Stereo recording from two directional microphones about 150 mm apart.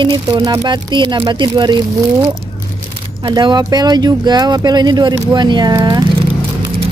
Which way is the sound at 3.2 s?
30° right (ahead or behind).